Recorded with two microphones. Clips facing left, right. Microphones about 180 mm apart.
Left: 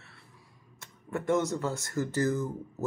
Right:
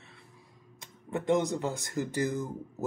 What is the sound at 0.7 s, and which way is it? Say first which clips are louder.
Speech: even; 15° right (ahead or behind).